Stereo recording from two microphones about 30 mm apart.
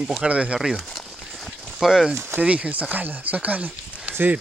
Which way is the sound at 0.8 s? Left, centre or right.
Centre.